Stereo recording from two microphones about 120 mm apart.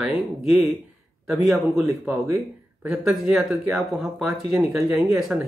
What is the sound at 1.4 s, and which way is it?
Speech, 20° right (ahead or behind).